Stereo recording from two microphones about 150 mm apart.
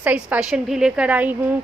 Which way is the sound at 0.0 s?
10° right (ahead or behind).